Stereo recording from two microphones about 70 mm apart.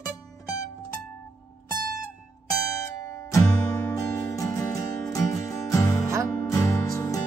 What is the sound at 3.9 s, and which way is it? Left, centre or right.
Music, left.